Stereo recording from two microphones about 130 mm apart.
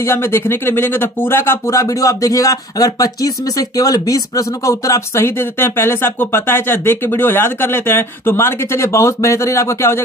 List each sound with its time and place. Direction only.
0.0 s speech: 20° left (ahead or behind)